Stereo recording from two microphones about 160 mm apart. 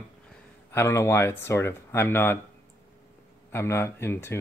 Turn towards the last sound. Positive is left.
turn(degrees=15)  # may be behind; listen again after turning